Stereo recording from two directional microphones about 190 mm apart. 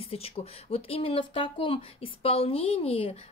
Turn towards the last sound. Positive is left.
turn(degrees=30)  # may be behind; listen again after turning